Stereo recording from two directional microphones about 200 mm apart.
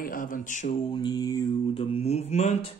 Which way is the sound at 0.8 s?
20° left (ahead or behind).